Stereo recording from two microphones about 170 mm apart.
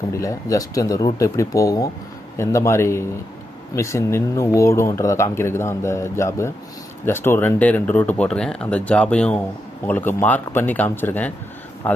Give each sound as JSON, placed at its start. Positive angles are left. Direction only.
{"t": 0.1, "sound": "speech", "side_deg": 20}